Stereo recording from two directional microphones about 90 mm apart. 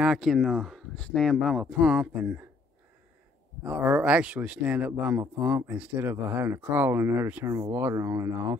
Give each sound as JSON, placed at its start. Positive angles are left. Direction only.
{"t": 0.0, "sound": "speech", "side_deg": -5}
{"t": 3.6, "sound": "speech", "side_deg": -15}
{"t": 7.9, "sound": "speech", "side_deg": -35}